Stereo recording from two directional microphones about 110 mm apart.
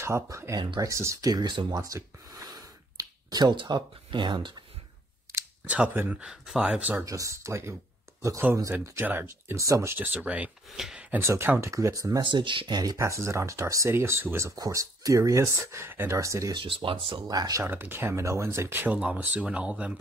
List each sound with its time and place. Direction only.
0.0 s speech: 25° right (ahead or behind); by 4.6 s 45° right (ahead or behind)
5.7 s speech: 10° right (ahead or behind)
7.1 s speech: 30° right (ahead or behind)
9.9 s speech: 15° right (ahead or behind); by 12.2 s 30° right (ahead or behind)
12.2 s speech: 45° right (ahead or behind); by 16.5 s 30° right (ahead or behind)
16.5 s speech: 50° right (ahead or behind)
17.3 s speech: 35° right (ahead or behind)
17.6 s speech: 20° right (ahead or behind)